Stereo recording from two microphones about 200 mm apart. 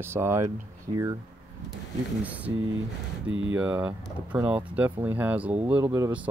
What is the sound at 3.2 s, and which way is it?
Speech, 75° right (ahead or behind).